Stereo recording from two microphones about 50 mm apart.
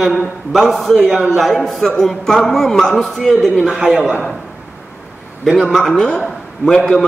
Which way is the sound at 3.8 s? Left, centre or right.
Centre.